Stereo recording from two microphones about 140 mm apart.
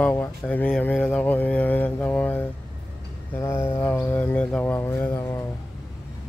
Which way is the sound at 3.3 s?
20° left (ahead or behind).